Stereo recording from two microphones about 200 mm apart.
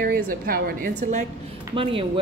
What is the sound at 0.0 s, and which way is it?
A woman's voice, 45° right (ahead or behind).